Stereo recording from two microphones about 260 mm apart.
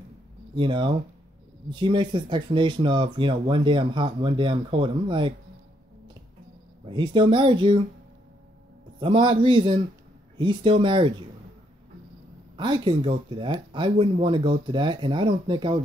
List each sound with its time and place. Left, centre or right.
0.6 s speech: centre
6.9 s speech: centre
9.0 s speech: centre
12.5 s speech: centre